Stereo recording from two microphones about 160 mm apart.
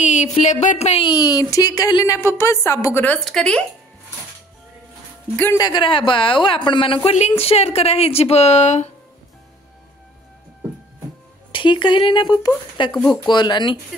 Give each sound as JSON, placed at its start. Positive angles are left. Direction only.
{"t": 0.0, "sound": "a sound", "side_deg": 45}
{"t": 1.0, "sound": "speech", "side_deg": 25}
{"t": 2.1, "sound": "a woman's voice", "side_deg": 15}
{"t": 5.3, "sound": "a woman's voice", "side_deg": 15}
{"t": 5.6, "sound": "a woman's voice", "side_deg": 30}
{"t": 11.5, "sound": "speech", "side_deg": 30}